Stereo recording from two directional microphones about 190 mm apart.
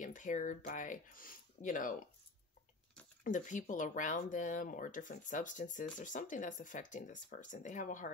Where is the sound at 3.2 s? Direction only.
40° left (ahead or behind).